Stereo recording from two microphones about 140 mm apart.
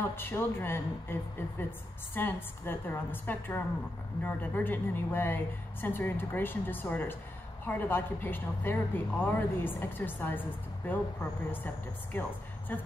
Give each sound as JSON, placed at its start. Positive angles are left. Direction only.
{"t": 0.1, "sound": "a woman's voice", "side_deg": 15}
{"t": 2.1, "sound": "a woman's voice", "side_deg": 15}
{"t": 11.5, "sound": "a woman's voice", "side_deg": 15}